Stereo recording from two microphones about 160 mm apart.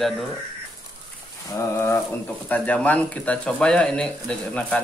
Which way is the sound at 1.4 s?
15° left (ahead or behind).